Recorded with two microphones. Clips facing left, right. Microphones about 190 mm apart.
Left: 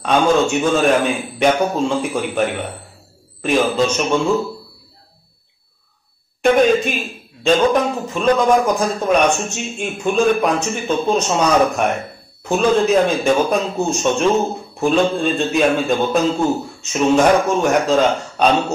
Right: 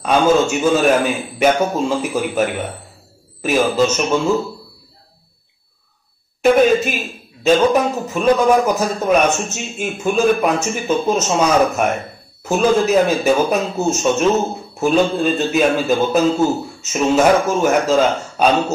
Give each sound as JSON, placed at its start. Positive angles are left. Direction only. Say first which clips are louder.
{"t": 0.0, "sound": "a man's voice", "louder": "right 1 dB", "side_deg": -5}
{"t": 6.4, "sound": "a man's voice", "louder": "right 1 dB", "side_deg": -5}